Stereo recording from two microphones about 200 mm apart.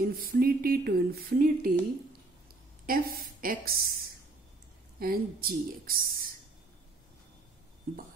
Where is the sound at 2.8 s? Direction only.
45° right (ahead or behind).